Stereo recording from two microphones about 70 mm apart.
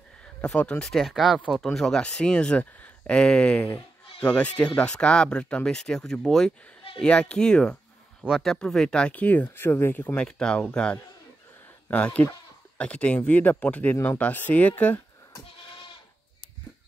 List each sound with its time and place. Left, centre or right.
0.4 s speech: centre
0.8 s speech: centre; by 10.1 s left
10.2 s speech: centre